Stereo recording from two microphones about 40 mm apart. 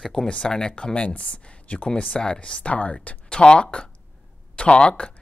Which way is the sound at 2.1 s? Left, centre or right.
Left.